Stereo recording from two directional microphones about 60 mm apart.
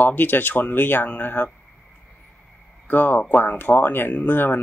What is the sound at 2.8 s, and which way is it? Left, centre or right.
Speech, left.